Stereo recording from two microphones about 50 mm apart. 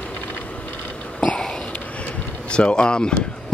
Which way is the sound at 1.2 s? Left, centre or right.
Left.